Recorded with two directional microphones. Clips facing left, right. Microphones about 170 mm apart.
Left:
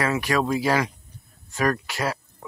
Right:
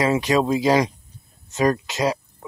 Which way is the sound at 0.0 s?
20° right (ahead or behind).